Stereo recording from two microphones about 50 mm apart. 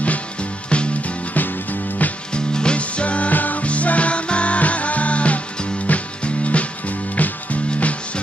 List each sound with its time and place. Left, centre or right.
0.0 s music: left
1.3 s music: left
2.3 s music: centre